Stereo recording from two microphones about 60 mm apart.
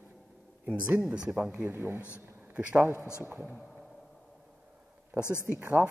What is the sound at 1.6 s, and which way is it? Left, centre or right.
Speech, right.